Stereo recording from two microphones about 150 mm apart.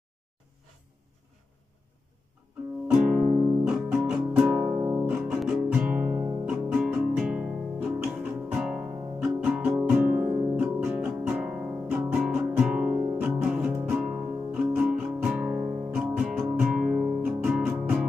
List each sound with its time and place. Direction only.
2.9 s music: 5° right (ahead or behind)
9.4 s guitar: 10° right (ahead or behind)
12.3 s music: 10° right (ahead or behind)